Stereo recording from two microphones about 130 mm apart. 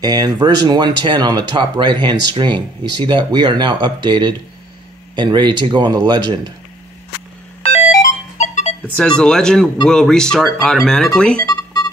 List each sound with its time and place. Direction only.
0.0 s speech: 30° right (ahead or behind)
7.6 s music: 60° left (ahead or behind)
8.9 s speech: 5° left (ahead or behind)
11.4 s music: 30° left (ahead or behind)